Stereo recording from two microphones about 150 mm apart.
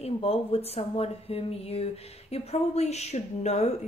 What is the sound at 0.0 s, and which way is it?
Speech, 40° left (ahead or behind).